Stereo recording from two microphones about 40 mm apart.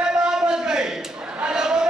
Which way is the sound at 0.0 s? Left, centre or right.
Centre.